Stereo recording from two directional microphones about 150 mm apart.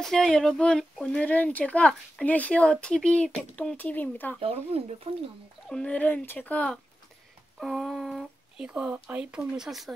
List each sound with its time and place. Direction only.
0.0 s speech: 5° left (ahead or behind)
4.4 s speech: 40° right (ahead or behind)
5.7 s speech: 5° left (ahead or behind)
7.5 s speech: 5° right (ahead or behind)